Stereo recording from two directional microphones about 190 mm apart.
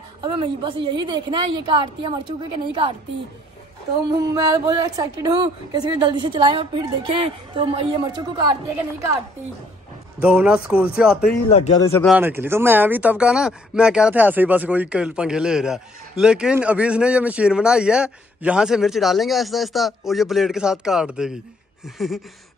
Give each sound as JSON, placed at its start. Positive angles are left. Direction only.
{"t": 0.2, "sound": "a woman's voice", "side_deg": -25}
{"t": 4.2, "sound": "a woman's voice", "side_deg": -20}
{"t": 10.2, "sound": "speech", "side_deg": -5}
{"t": 11.7, "sound": "speech", "side_deg": 15}
{"t": 12.1, "sound": "speech", "side_deg": -10}